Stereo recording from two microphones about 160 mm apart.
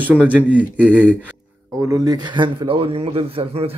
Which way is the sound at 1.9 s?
25° right (ahead or behind).